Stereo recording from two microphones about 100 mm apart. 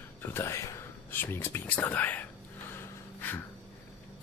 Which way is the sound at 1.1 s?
20° left (ahead or behind).